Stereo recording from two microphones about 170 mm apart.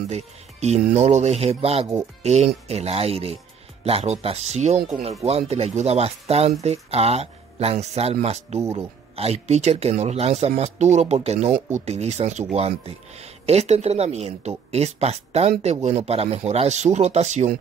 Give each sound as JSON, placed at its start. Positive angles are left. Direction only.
{"t": 0.1, "sound": "speech", "side_deg": -40}